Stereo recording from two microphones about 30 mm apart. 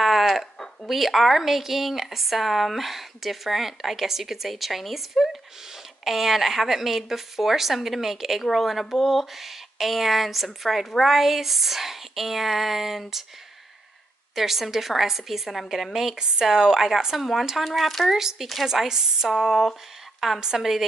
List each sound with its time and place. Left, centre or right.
0.0 s a sound: centre
0.8 s speech: centre
14.3 s speech: centre
16.2 s speech: right
17.2 s speech: centre
18.1 s speech: centre